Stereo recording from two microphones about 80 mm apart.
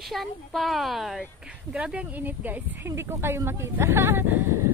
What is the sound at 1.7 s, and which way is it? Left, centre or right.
Speech, centre.